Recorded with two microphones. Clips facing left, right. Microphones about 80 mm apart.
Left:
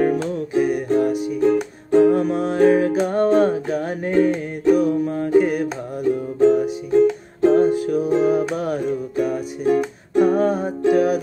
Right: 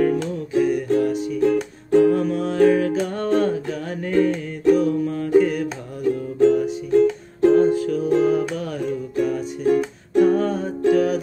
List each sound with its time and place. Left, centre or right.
0.1 s music: centre
1.5 s music: left
4.6 s music: centre
5.0 s music: left
6.4 s music: centre
8.6 s music: left
9.1 s music: centre